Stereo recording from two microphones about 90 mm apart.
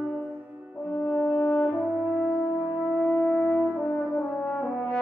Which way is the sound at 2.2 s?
25° left (ahead or behind).